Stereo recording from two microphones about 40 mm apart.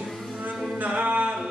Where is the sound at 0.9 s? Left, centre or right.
Right.